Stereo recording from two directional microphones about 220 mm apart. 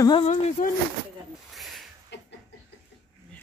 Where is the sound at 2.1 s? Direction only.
50° left (ahead or behind).